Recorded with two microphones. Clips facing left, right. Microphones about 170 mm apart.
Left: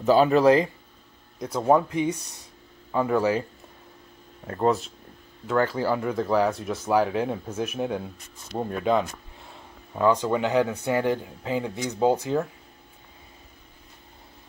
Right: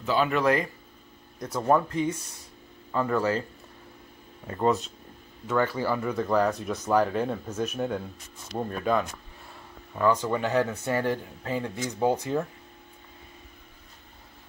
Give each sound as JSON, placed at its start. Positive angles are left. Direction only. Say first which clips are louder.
{"t": 0.0, "sound": "speech", "louder": "left 7 dB", "side_deg": 40}
{"t": 1.4, "sound": "speech", "louder": "left 3 dB", "side_deg": 15}
{"t": 4.5, "sound": "speech", "louder": "left 2 dB", "side_deg": 5}
{"t": 9.9, "sound": "speech", "louder": "left 3 dB", "side_deg": 15}